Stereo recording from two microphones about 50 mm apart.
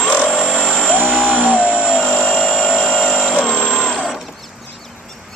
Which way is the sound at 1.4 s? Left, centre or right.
Left.